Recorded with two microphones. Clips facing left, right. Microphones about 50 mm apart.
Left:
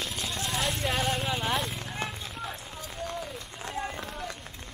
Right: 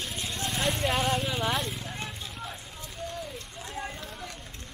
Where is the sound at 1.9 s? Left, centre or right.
Centre.